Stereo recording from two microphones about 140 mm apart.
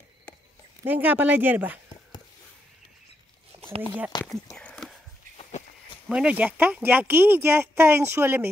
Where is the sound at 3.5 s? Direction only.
45° right (ahead or behind).